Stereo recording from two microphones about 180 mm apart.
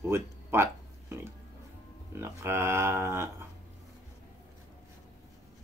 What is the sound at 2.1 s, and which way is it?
Speech, 15° right (ahead or behind).